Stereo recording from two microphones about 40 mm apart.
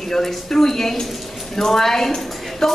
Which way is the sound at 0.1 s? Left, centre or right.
Centre.